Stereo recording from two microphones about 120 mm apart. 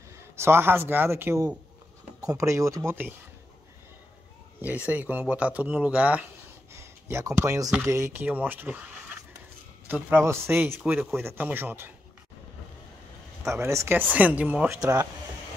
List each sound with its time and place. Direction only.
0.4 s speech: 20° right (ahead or behind)
4.6 s speech: 15° right (ahead or behind)
6.7 s speech: 20° right (ahead or behind)
9.8 s speech: 15° right (ahead or behind)
13.4 s speech: 25° right (ahead or behind)
14.7 s speech: 30° right (ahead or behind)